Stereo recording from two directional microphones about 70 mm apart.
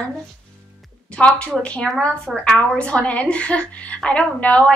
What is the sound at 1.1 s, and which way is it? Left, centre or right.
A woman's voice, centre.